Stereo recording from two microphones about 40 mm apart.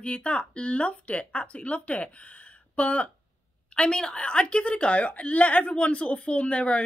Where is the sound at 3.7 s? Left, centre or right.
Left.